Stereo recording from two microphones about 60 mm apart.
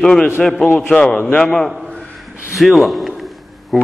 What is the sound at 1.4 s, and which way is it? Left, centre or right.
Speech, centre.